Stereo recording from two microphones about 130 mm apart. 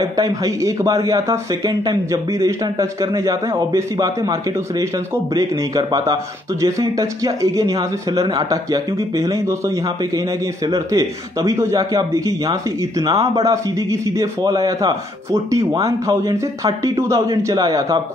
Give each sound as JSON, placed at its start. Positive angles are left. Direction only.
{"t": 0.2, "sound": "speech", "side_deg": -25}